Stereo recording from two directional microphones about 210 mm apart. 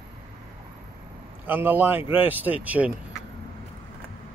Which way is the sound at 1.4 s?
10° right (ahead or behind).